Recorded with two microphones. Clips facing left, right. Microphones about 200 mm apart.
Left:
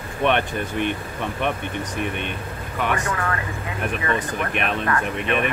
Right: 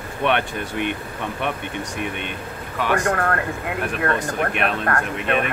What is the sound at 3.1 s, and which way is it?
Speech, 55° right (ahead or behind).